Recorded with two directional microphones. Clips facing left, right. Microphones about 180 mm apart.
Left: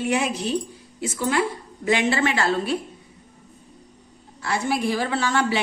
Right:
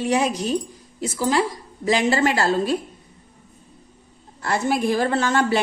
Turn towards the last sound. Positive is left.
turn(degrees=-50)  # may be behind; listen again after turning